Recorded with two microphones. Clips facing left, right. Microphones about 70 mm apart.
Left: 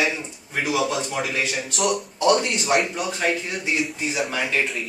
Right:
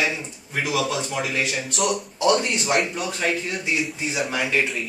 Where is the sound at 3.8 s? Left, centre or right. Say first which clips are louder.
Left 1 dB; centre.